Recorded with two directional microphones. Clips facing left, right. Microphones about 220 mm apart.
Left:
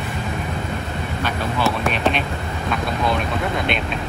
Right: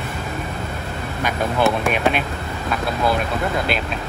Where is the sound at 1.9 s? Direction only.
10° right (ahead or behind).